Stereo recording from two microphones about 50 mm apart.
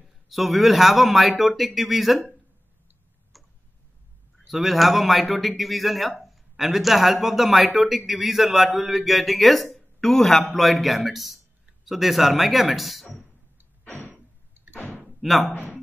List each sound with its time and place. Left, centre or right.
0.3 s a man's voice: centre
3.3 s tick-tock: centre
4.4 s a man's voice: centre
9.8 s a sound: centre
10.5 s a man's voice: centre
13.8 s a sound: left
15.1 s speech: centre